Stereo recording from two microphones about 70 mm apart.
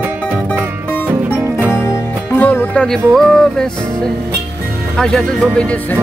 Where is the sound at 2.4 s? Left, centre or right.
Left.